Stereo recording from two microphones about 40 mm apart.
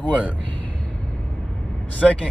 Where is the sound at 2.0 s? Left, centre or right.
Left.